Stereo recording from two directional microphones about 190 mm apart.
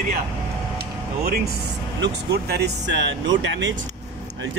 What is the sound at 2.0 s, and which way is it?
Speech, 60° right (ahead or behind).